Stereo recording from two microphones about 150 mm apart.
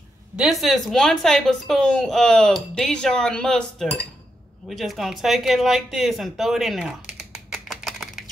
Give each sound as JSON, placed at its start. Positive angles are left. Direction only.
{"t": 0.4, "sound": "speech", "side_deg": 0}